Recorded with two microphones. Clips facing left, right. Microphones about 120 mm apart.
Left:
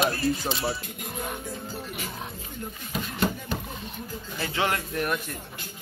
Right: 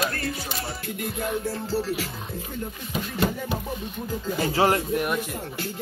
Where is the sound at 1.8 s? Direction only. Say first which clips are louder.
Right 7 dB; 90° right.